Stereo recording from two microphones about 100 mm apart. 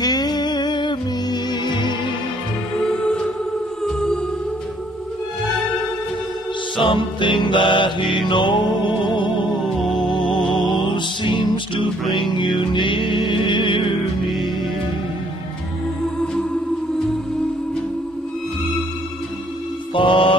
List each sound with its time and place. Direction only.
0.0 s music: 40° left (ahead or behind)
2.9 s music: 10° left (ahead or behind)
6.8 s music: 55° left (ahead or behind)
10.4 s music: centre (ahead or behind)
11.0 s music: 55° left (ahead or behind)
19.9 s music: 60° left (ahead or behind)